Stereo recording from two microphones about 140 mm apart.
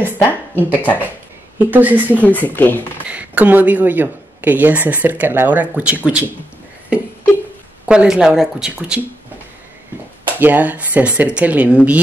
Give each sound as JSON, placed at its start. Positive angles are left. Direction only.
{"t": 0.0, "sound": "speech", "side_deg": 15}
{"t": 1.6, "sound": "speech", "side_deg": -10}
{"t": 2.0, "sound": "speech", "side_deg": 10}
{"t": 3.1, "sound": "speech", "side_deg": -10}
{"t": 7.9, "sound": "speech", "side_deg": -5}
{"t": 10.2, "sound": "speech", "side_deg": -15}